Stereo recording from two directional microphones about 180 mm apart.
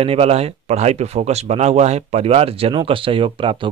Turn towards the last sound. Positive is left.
turn(degrees=-30)  # may be behind; listen again after turning